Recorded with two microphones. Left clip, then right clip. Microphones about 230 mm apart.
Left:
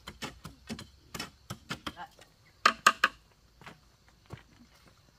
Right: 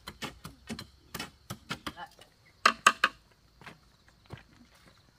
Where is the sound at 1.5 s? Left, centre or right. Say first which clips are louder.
Even; centre.